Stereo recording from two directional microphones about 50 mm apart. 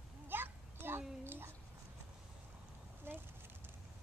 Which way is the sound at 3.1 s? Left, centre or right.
Right.